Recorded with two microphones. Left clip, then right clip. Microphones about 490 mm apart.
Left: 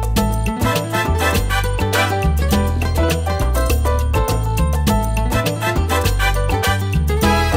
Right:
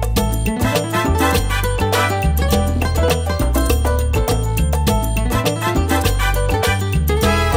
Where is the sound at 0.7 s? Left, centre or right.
Right.